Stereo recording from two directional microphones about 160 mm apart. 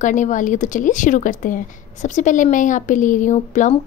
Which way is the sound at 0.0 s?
50° left (ahead or behind).